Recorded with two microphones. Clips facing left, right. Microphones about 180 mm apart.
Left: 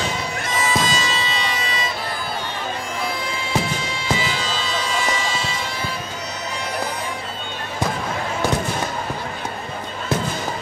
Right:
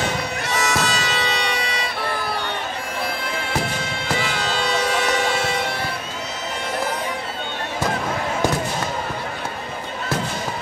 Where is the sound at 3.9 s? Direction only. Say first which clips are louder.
Left 1 dB; 60° right (ahead or behind).